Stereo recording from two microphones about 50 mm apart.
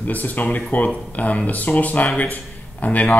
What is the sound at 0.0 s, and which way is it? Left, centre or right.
A man's voice, left.